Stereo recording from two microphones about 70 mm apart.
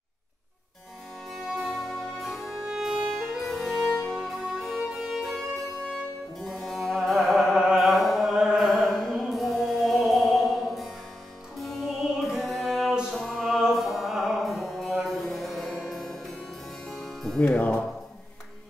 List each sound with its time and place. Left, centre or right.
1.6 s music: centre
6.4 s music: centre
17.4 s music: centre